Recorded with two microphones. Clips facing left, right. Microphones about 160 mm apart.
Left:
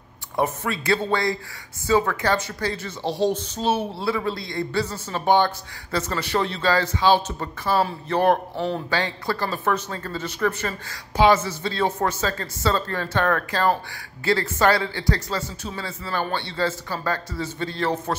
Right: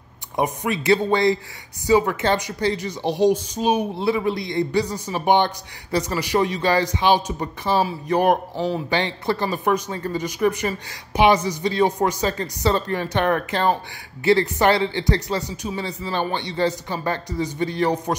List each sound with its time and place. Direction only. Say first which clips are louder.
0.4 s speech: right 2 dB; 15° right (ahead or behind)
8.9 s speech: right 3 dB; 20° right (ahead or behind)